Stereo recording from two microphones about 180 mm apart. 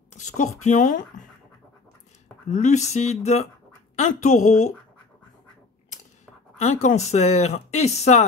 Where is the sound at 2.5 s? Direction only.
40° left (ahead or behind).